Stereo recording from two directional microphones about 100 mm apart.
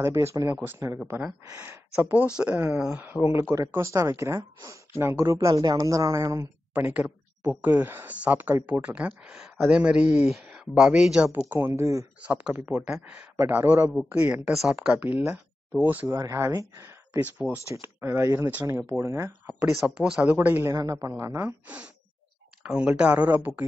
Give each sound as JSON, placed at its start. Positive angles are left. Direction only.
{"t": 0.0, "sound": "speech", "side_deg": -25}
{"t": 3.0, "sound": "a woman's voice", "side_deg": -20}
{"t": 6.7, "sound": "speech", "side_deg": -15}
{"t": 11.4, "sound": "speech", "side_deg": -20}
{"t": 12.2, "sound": "speech", "side_deg": -15}
{"t": 15.8, "sound": "speech", "side_deg": -20}
{"t": 16.1, "sound": "speech", "side_deg": -30}
{"t": 19.4, "sound": "speech", "side_deg": -10}
{"t": 20.3, "sound": "a woman's voice", "side_deg": -25}
{"t": 21.6, "sound": "speech", "side_deg": -15}